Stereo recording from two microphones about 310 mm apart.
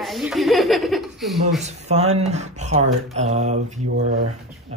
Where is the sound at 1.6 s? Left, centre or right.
Right.